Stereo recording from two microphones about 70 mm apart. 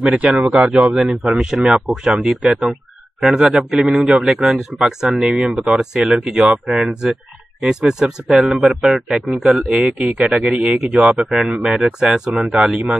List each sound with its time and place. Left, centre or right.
0.1 s speech: right